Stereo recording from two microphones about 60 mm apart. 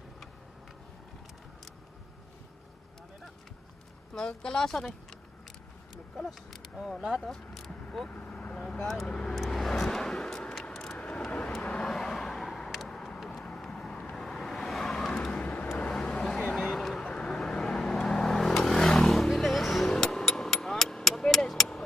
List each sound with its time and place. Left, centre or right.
4.1 s speech: centre
6.1 s speech: centre
8.1 s vehicle: left
9.0 s speech: centre
9.3 s vehicle: centre
11.0 s vehicle: centre
11.9 s vehicle: centre
15.4 s vehicle: left
15.8 s vehicle: centre
16.5 s a sound: centre
17.0 s vehicle: centre
19.9 s a sound: centre